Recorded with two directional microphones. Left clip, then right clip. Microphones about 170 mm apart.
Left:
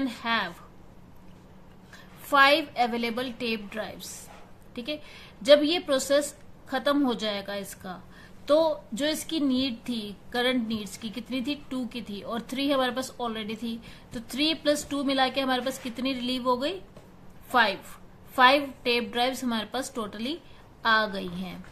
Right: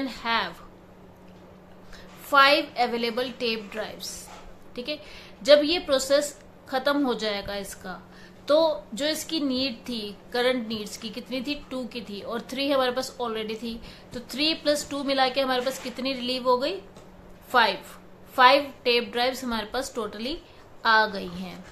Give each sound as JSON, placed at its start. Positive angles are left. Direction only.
{"t": 0.0, "sound": "a woman's voice", "side_deg": 25}
{"t": 2.2, "sound": "a woman's voice", "side_deg": 25}